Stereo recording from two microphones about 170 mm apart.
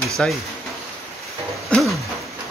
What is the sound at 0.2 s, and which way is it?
Speech, 5° left (ahead or behind).